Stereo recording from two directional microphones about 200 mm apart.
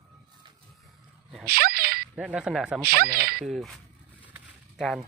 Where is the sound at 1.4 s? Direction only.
50° right (ahead or behind).